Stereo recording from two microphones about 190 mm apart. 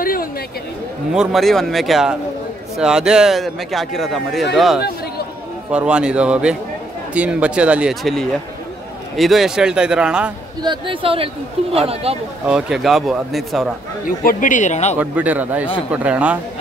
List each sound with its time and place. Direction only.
0.0 s chatter: 50° left (ahead or behind)
1.1 s speech: centre (ahead or behind)
10.6 s speech: 25° right (ahead or behind)
12.4 s speech: 5° right (ahead or behind)
14.0 s speech: 45° left (ahead or behind)
15.0 s speech: 10° right (ahead or behind)